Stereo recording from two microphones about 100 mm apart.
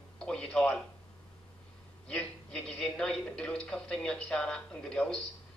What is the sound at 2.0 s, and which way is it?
A man's voice, 10° left (ahead or behind).